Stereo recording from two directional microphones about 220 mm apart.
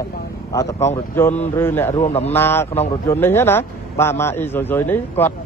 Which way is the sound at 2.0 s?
30° left (ahead or behind).